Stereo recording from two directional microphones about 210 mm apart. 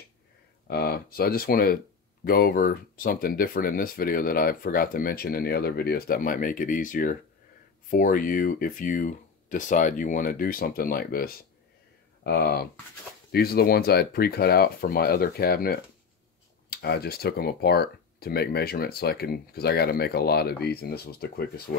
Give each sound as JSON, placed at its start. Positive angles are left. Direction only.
{"t": 0.7, "sound": "speech", "side_deg": 50}